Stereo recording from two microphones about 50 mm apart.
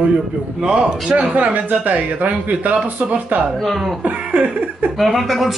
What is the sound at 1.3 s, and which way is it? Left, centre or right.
Speech, right.